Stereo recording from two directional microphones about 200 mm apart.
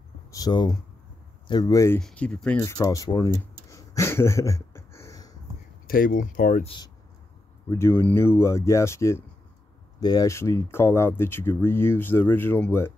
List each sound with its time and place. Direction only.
0.3 s speech: 20° left (ahead or behind)
2.0 s speech: 5° left (ahead or behind)
2.6 s speech: 15° left (ahead or behind)
3.7 s a sound: 15° left (ahead or behind)
5.9 s speech: 45° left (ahead or behind)
7.7 s speech: 10° left (ahead or behind)